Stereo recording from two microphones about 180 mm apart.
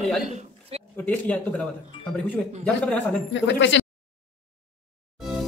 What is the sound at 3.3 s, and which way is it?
Speech, 85° left.